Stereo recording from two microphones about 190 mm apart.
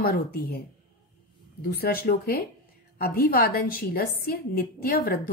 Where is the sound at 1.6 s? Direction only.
55° left (ahead or behind).